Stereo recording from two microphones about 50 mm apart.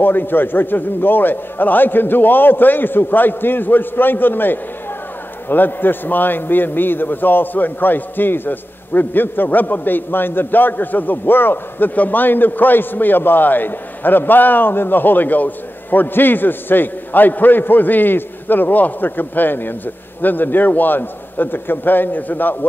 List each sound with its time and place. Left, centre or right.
0.0 s a man's voice: left